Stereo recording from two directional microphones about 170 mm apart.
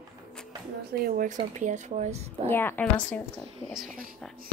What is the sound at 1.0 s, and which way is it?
Speech, 55° right (ahead or behind).